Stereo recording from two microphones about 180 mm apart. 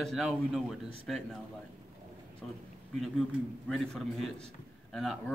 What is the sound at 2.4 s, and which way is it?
Speech, centre (ahead or behind).